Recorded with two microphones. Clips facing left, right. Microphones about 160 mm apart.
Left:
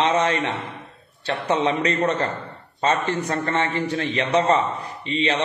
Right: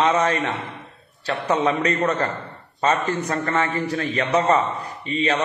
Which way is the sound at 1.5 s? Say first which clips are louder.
Right 1 dB; 30° left (ahead or behind).